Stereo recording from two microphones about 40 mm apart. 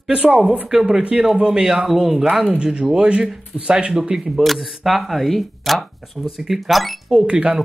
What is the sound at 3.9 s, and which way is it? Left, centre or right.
Speech, centre.